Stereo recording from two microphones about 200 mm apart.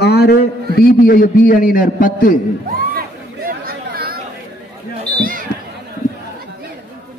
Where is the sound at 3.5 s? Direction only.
50° right (ahead or behind).